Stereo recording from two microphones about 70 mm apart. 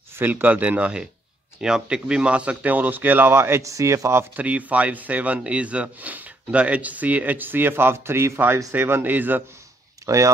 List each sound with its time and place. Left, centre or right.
0.1 s speech: right
3.6 s speech: right
4.4 s speech: right
10.0 s speech: right